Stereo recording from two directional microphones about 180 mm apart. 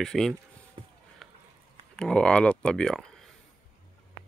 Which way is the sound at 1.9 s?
5° left (ahead or behind).